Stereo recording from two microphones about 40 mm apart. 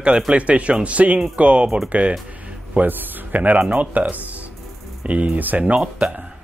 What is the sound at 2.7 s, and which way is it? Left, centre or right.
A man's voice, right.